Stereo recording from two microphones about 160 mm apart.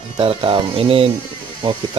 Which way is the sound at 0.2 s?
35° right (ahead or behind).